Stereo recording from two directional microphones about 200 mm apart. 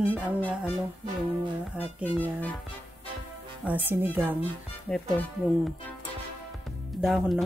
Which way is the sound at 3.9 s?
10° right (ahead or behind).